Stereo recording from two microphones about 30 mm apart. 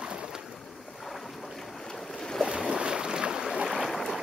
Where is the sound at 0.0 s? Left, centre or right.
Right.